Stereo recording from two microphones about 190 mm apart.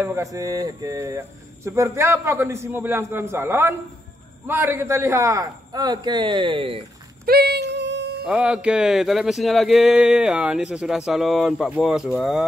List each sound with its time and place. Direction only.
0.0 s a man's voice: 15° right (ahead or behind)
7.2 s music: 55° right (ahead or behind)
8.3 s speech: 5° right (ahead or behind)